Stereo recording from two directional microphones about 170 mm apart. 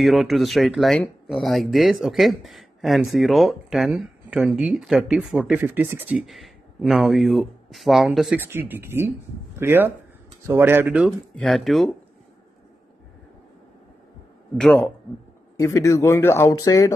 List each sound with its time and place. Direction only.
0.0 s speech: centre (ahead or behind)
8.4 s speech: 10° right (ahead or behind)
14.6 s speech: centre (ahead or behind)
15.5 s speech: 20° left (ahead or behind)